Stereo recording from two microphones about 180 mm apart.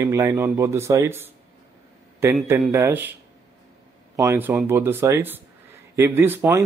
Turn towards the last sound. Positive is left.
turn(degrees=-15)  # may be behind; listen again after turning